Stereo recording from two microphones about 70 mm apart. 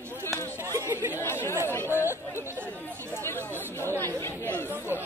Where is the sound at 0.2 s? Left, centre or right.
Left.